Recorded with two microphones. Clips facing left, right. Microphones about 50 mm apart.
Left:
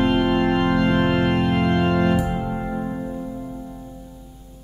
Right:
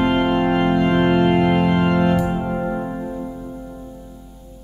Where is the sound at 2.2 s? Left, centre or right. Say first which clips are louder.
Right 3 dB; right.